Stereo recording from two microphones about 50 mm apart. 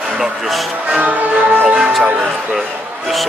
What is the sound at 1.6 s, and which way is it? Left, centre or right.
Speech, centre.